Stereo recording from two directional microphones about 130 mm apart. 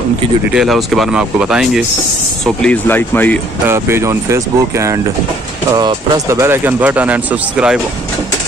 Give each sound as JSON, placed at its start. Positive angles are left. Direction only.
{"t": 0.5, "sound": "speech", "side_deg": -5}
{"t": 2.4, "sound": "speech", "side_deg": 10}
{"t": 3.6, "sound": "speech", "side_deg": -20}